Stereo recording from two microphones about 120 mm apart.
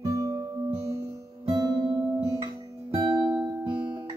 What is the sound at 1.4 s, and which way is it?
Music, 35° right (ahead or behind).